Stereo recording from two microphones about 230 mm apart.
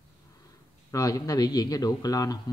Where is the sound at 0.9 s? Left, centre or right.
Centre.